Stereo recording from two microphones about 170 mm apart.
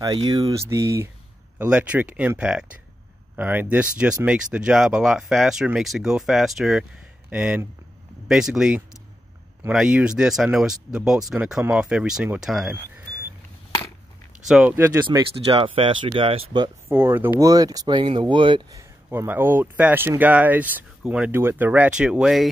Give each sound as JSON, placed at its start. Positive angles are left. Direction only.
{"t": 0.0, "sound": "speech", "side_deg": -20}
{"t": 14.4, "sound": "speech", "side_deg": -5}
{"t": 15.0, "sound": "speech", "side_deg": -30}
{"t": 16.9, "sound": "speech", "side_deg": -15}
{"t": 18.8, "sound": "speech", "side_deg": -15}